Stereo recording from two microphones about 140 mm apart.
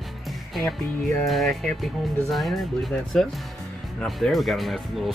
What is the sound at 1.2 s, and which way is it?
Speech, centre (ahead or behind).